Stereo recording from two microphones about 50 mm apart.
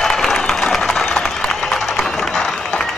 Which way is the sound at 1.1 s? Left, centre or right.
Centre.